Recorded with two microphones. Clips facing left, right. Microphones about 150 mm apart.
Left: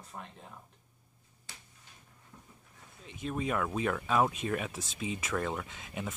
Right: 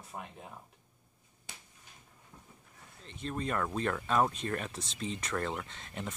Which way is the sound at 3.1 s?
5° left (ahead or behind).